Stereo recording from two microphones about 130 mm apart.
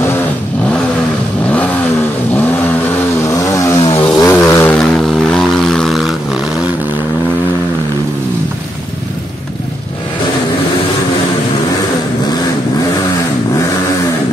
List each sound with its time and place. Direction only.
3.3 s vehicle: 25° left (ahead or behind)
4.7 s vehicle: 5° left (ahead or behind)